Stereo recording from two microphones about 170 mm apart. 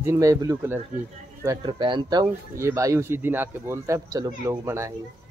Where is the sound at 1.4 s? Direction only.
25° right (ahead or behind).